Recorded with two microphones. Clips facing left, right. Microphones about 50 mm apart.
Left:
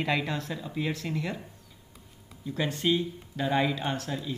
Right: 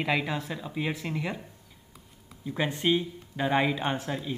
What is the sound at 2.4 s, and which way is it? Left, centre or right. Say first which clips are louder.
Speech: right 1 dB; centre.